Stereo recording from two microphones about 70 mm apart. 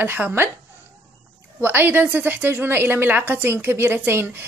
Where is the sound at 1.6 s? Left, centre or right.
Right.